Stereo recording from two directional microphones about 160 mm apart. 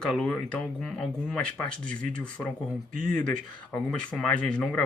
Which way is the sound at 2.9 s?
60° right (ahead or behind).